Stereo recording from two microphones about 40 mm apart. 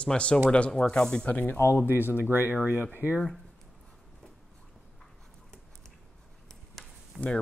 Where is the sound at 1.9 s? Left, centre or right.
Left.